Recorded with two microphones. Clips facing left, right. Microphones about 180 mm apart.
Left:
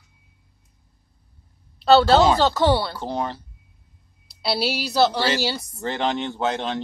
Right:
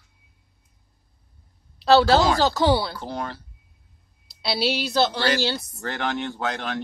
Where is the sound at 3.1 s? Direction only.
20° left (ahead or behind).